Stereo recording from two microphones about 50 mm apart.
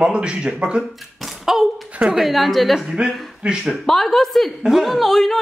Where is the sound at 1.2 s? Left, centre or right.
Centre.